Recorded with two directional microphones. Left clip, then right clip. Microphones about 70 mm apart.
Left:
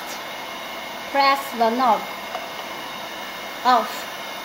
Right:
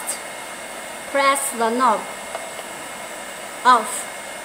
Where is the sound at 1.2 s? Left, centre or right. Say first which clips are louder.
Even; right.